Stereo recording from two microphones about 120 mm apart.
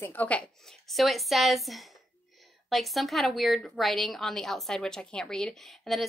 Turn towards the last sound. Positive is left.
turn(degrees=0)  # may be behind; listen again after turning